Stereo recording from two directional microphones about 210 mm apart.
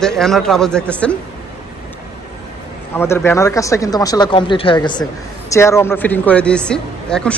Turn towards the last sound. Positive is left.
turn(degrees=5)  # may be behind; listen again after turning